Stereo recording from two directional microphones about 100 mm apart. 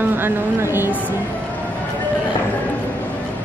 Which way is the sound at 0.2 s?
25° right (ahead or behind).